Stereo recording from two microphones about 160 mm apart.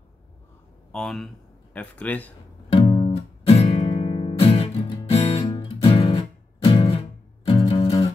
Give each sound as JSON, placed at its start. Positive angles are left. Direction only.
{"t": 0.9, "sound": "speech", "side_deg": 0}
{"t": 2.7, "sound": "music", "side_deg": 35}